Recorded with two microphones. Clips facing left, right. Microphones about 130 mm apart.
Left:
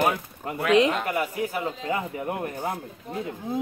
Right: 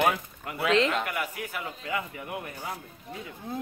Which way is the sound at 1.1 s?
35° left (ahead or behind).